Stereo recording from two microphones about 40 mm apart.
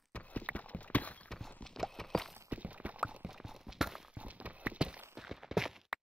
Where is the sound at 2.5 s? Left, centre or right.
Right.